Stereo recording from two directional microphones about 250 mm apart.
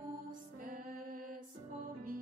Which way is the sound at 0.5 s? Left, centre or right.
Right.